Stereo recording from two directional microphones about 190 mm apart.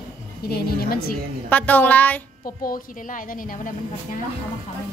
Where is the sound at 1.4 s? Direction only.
10° left (ahead or behind).